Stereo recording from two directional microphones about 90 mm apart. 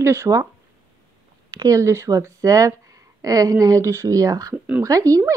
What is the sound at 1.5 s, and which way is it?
Speech, 45° right (ahead or behind).